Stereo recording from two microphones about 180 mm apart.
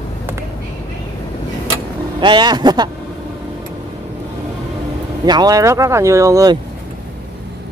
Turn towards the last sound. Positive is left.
turn(degrees=-20)  # may be behind; listen again after turning